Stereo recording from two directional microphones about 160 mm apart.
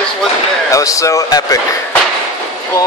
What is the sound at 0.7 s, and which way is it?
Speech, 20° left (ahead or behind).